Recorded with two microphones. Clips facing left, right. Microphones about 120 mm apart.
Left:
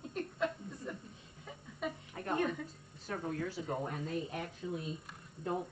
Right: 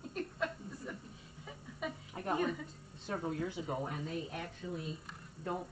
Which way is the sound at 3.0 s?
20° right (ahead or behind).